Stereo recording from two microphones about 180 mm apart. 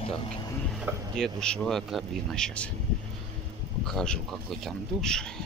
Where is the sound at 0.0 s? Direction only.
25° left (ahead or behind).